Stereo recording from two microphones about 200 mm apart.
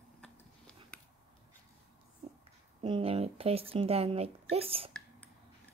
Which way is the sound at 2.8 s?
25° right (ahead or behind).